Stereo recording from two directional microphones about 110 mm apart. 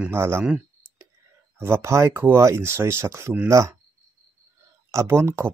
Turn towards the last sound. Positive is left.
turn(degrees=-25)  # may be behind; listen again after turning